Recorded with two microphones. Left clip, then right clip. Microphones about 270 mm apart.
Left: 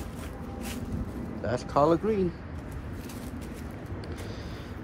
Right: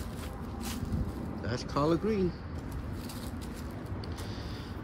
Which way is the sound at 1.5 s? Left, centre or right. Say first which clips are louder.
Left 6 dB; centre.